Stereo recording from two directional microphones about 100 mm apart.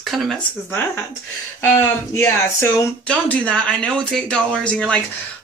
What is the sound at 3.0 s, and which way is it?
Speech, 10° left (ahead or behind).